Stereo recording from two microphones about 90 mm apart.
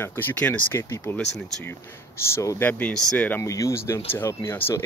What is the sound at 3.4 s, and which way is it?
Speech, 35° left (ahead or behind).